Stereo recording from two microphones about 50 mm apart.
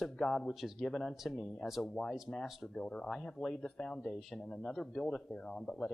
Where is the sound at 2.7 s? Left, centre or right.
Centre.